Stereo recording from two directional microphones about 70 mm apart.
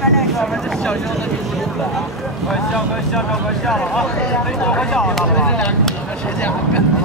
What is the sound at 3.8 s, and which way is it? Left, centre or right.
Speech, centre.